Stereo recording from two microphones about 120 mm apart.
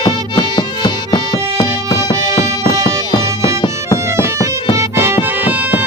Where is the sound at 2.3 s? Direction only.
25° right (ahead or behind).